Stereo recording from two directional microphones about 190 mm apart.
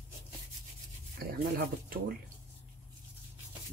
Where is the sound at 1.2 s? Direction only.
50° right (ahead or behind).